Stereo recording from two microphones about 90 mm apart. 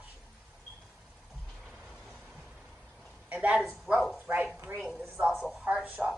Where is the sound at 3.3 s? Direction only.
15° right (ahead or behind).